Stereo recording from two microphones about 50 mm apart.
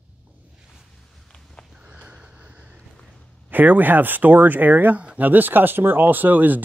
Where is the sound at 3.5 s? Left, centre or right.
Right.